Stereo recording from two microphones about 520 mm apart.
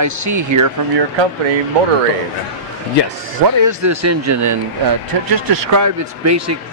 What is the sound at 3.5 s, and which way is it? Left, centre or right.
Speech, right.